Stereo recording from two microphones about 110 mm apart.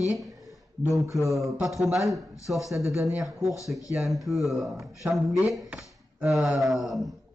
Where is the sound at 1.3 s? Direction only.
Centre (ahead or behind).